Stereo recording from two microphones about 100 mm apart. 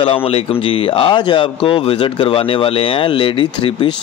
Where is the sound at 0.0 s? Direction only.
65° left (ahead or behind).